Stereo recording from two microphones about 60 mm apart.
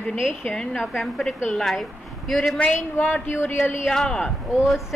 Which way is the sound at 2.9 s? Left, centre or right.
Left.